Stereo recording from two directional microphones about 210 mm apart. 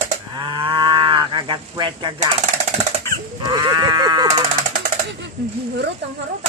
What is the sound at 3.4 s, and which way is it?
Sheep, 20° right (ahead or behind).